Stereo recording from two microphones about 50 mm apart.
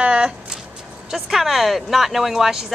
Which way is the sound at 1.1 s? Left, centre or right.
Centre.